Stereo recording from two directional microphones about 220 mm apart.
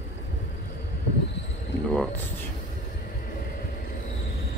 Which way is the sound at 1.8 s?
5° left (ahead or behind).